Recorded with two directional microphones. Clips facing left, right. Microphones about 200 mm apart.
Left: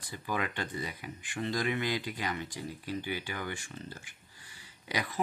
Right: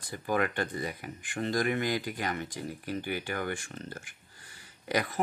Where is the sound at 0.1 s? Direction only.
50° right (ahead or behind).